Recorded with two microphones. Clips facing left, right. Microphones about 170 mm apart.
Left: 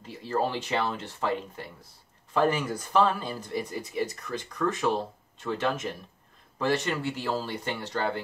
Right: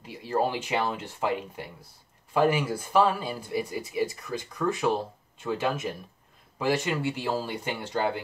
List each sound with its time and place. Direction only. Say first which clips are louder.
0.0 s speech: right 1 dB; 10° right (ahead or behind)